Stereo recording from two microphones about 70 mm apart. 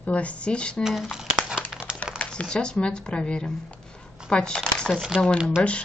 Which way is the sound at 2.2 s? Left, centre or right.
Centre.